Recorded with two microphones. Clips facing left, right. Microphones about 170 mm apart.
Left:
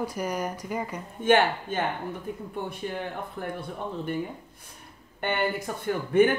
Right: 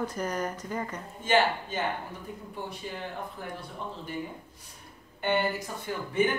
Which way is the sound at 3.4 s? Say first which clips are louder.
Left 6 dB; 55° left (ahead or behind).